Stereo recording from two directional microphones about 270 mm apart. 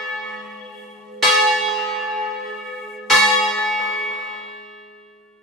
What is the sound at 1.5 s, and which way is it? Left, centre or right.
Church bell, centre.